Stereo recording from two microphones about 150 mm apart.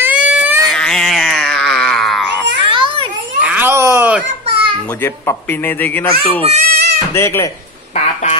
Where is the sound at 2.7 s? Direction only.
35° right (ahead or behind).